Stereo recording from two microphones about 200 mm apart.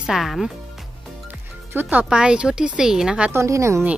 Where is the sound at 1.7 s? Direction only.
10° right (ahead or behind).